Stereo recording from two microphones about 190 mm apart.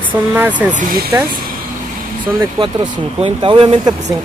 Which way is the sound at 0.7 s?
50° right (ahead or behind).